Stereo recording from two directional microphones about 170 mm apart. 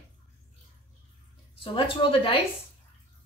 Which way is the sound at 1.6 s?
30° left (ahead or behind).